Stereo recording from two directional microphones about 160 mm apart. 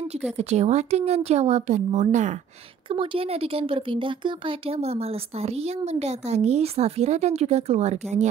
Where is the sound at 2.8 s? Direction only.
35° right (ahead or behind).